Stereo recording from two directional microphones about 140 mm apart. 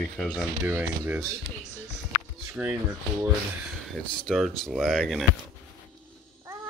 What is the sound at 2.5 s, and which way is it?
Speech, 15° right (ahead or behind).